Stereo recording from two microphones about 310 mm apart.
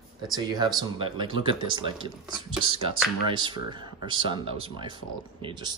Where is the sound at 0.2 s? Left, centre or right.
Centre.